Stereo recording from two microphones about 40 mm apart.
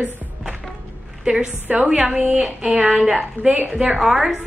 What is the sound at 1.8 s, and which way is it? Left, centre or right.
A woman's voice, right.